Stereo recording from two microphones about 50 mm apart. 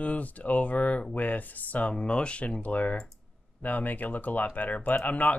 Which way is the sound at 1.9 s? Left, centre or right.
Centre.